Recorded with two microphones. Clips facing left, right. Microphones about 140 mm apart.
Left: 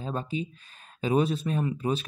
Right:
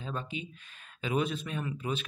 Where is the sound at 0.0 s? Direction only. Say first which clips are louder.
Left 6 dB; 35° left (ahead or behind).